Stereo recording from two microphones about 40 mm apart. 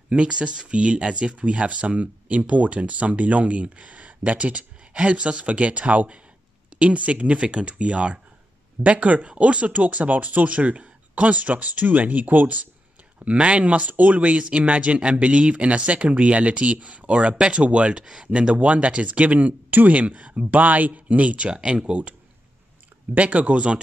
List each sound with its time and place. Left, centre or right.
0.1 s speech: right
13.2 s speech: right
18.6 s speech: right
21.6 s speech: right
23.1 s speech: right